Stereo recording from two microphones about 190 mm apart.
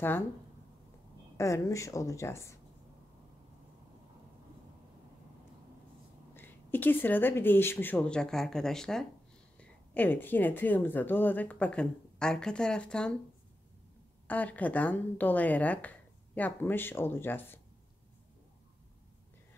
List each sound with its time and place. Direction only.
1.3 s speech: 15° left (ahead or behind)
6.3 s speech: 10° left (ahead or behind)
14.2 s speech: 10° left (ahead or behind)